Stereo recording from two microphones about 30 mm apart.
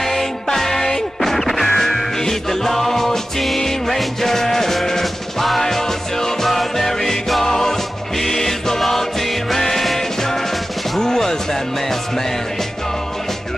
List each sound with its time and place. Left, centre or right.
0.0 s music: centre